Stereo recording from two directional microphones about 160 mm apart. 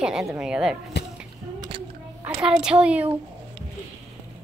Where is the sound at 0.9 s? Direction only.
90° left.